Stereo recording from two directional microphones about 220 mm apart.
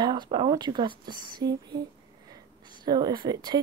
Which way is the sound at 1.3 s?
20° right (ahead or behind).